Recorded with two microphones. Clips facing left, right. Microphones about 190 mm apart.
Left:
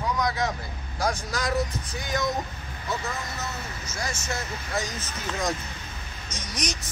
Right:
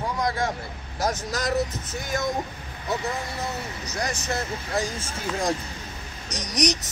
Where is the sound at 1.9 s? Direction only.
45° right (ahead or behind).